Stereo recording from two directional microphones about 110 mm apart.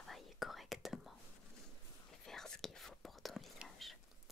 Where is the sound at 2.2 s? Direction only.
5° left (ahead or behind).